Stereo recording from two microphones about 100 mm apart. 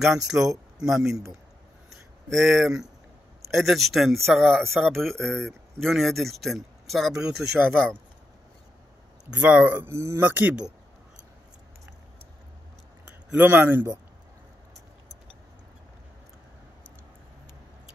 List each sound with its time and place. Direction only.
0.0 s speech: 5° right (ahead or behind)
1.9 s a sound: centre (ahead or behind)
3.4 s speech: centre (ahead or behind)
7.6 s speech: 5° left (ahead or behind)
9.3 s speech: 15° right (ahead or behind)
13.3 s speech: 20° right (ahead or behind)